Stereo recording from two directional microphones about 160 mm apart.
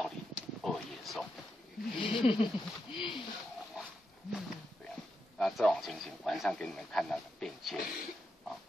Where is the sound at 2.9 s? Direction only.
30° left (ahead or behind).